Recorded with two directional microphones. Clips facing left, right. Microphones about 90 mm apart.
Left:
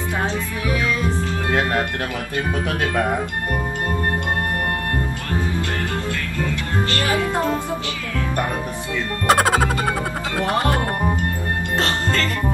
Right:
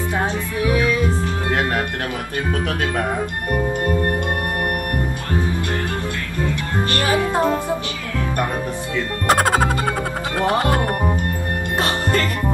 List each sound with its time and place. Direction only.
0.2 s music: 20° right (ahead or behind)
6.9 s speech: 20° right (ahead or behind)
9.3 s music: centre (ahead or behind)
11.8 s music: 15° right (ahead or behind)